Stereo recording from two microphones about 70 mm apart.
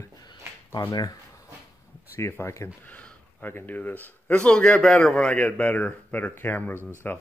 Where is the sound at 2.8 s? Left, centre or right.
Centre.